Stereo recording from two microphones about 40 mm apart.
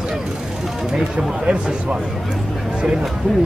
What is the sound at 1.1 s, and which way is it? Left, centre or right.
Speech, right.